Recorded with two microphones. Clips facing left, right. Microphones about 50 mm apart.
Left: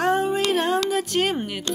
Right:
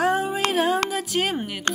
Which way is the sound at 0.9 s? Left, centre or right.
Centre.